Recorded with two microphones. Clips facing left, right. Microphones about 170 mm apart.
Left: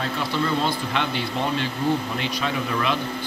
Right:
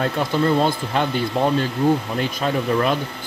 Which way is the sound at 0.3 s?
45° right (ahead or behind).